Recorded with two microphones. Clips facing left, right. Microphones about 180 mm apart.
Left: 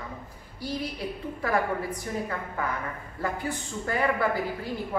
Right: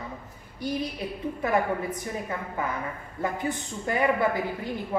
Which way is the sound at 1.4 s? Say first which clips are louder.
Right 1 dB; 20° right (ahead or behind).